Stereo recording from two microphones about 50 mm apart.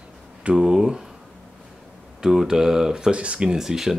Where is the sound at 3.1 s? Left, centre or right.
Right.